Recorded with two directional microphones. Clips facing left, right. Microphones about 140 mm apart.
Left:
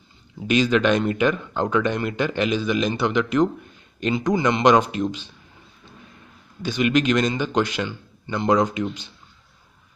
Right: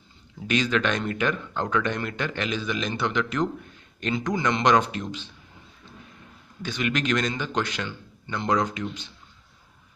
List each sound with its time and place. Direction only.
0.5 s speech: 15° left (ahead or behind)
6.6 s speech: 15° left (ahead or behind)